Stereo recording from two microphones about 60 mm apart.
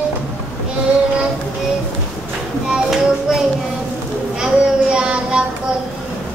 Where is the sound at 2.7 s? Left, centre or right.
Centre.